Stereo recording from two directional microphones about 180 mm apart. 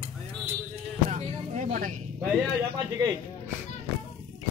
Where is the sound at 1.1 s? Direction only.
40° right (ahead or behind).